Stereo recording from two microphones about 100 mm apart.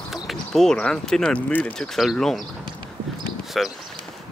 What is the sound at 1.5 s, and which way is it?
Speech, 20° left (ahead or behind).